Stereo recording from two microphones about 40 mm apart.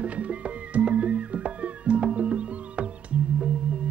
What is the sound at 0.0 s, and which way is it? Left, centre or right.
Music, right.